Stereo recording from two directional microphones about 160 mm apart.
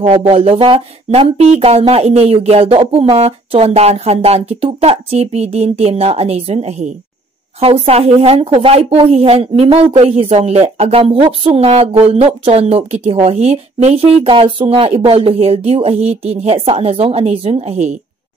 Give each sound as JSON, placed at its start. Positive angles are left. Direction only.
{"t": 0.0, "sound": "a woman's voice", "side_deg": -40}